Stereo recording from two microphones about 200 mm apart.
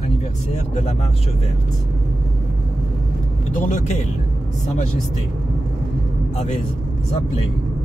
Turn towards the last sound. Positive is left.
turn(degrees=35)  # may be behind; listen again after turning